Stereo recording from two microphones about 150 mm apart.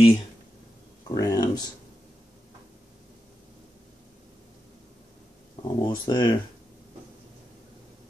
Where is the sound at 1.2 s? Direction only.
25° left (ahead or behind).